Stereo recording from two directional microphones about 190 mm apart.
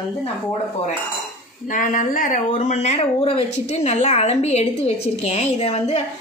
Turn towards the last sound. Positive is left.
turn(degrees=30)  # may be behind; listen again after turning